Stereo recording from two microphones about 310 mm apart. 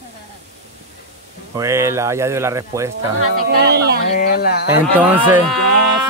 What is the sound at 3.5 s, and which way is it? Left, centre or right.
Speech, right.